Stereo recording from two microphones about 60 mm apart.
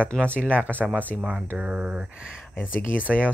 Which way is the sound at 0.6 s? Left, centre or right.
Right.